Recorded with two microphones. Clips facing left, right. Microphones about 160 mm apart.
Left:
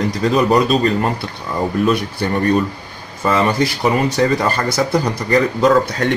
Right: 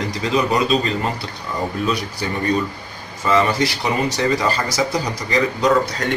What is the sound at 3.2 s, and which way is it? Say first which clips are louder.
Speech: left 2 dB; 50° left (ahead or behind).